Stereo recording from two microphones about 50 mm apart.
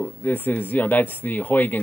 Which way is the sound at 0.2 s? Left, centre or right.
Left.